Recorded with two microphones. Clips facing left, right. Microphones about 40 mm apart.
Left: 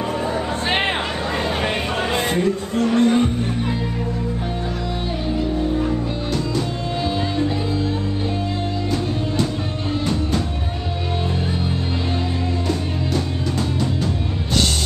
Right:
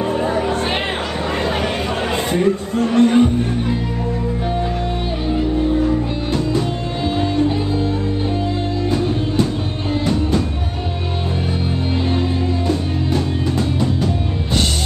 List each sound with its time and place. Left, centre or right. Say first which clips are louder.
0.0 s music: right 4 dB; right
0.7 s chatter: left 1 dB; left
1.2 s chatter: right 2 dB; right
1.6 s chatter: right 1 dB; left
2.1 s chatter: right 1 dB; left
2.4 s chatter: right 2 dB; right